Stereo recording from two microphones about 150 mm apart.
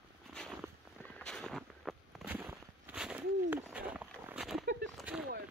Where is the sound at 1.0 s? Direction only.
10° left (ahead or behind).